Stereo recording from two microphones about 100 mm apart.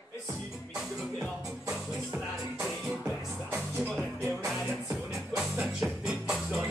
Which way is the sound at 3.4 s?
25° right (ahead or behind).